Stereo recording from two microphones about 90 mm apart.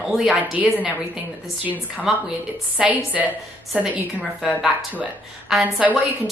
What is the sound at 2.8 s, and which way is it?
Speech, 15° right (ahead or behind).